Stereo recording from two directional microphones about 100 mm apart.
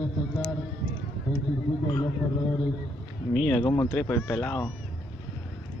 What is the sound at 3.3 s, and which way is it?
Speech, 5° left (ahead or behind).